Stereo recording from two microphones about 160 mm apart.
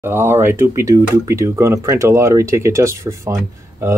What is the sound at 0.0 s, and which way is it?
Speech, 15° right (ahead or behind).